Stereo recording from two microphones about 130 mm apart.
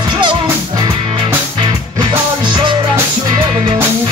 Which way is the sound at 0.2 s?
40° right (ahead or behind).